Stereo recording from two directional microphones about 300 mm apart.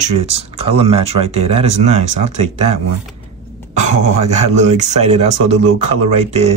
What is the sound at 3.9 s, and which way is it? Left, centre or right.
Speech, right.